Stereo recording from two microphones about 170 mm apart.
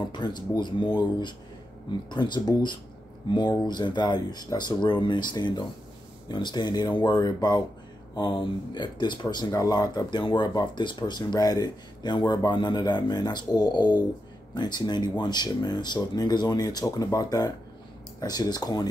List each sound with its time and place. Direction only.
0.1 s speech: 25° left (ahead or behind)